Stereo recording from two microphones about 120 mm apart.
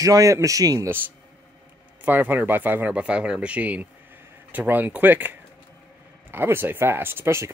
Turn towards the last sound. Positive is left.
turn(degrees=-20)  # may be behind; listen again after turning